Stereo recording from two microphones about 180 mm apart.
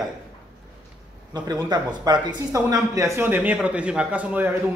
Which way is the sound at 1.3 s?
25° right (ahead or behind).